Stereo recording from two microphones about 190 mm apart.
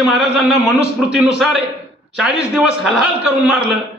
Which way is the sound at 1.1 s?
Centre (ahead or behind).